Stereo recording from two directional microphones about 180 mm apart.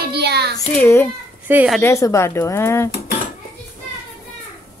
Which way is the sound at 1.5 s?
10° right (ahead or behind).